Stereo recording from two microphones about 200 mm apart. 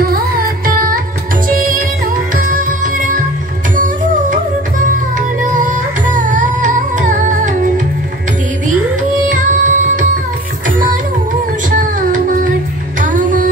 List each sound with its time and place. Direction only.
0.0 s carnatic music: 45° right (ahead or behind)
1.5 s music: 45° right (ahead or behind)
6.1 s music: 40° right (ahead or behind)
9.3 s music: 40° right (ahead or behind)
11.7 s music: 40° right (ahead or behind)